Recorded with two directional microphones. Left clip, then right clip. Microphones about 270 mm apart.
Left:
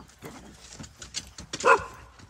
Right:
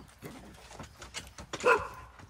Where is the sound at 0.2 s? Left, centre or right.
Centre.